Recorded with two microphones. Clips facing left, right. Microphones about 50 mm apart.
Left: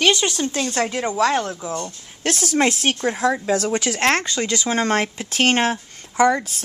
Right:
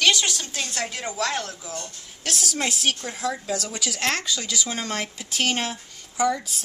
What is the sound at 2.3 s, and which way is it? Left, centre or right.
Speech, left.